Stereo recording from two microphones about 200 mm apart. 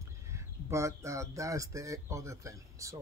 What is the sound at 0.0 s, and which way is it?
Speech, 15° right (ahead or behind).